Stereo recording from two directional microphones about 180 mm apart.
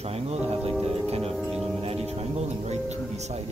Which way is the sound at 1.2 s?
Centre (ahead or behind).